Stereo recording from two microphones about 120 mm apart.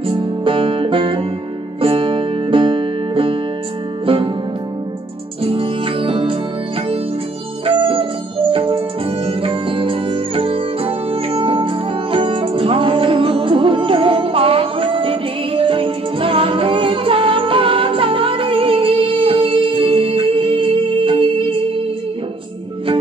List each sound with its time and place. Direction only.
0.0 s music: 45° right (ahead or behind)
5.4 s music: 50° right (ahead or behind)
7.6 s music: 50° right (ahead or behind)